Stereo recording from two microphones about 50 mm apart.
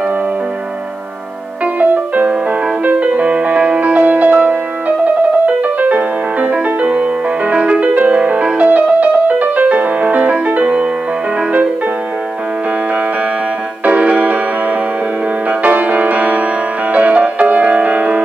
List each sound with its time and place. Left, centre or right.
1.8 s music: right
13.8 s music: right
15.6 s music: right